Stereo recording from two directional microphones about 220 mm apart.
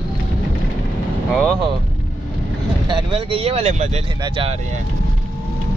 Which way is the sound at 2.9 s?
25° right (ahead or behind).